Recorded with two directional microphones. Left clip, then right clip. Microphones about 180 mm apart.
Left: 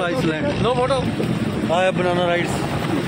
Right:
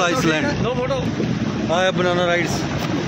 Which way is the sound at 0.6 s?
20° left (ahead or behind).